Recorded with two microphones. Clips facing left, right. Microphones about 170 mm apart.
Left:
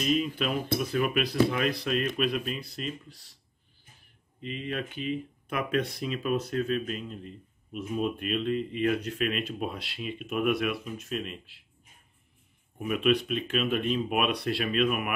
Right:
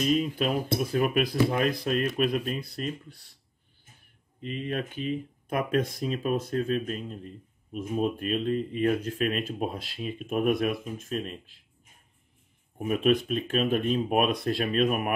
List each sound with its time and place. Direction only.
0.2 s speech: 40° right (ahead or behind); by 3.3 s 55° right (ahead or behind)
4.4 s speech: 40° right (ahead or behind)
12.7 s speech: 40° right (ahead or behind)